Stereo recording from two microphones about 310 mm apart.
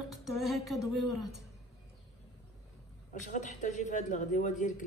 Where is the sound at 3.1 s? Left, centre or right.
Left.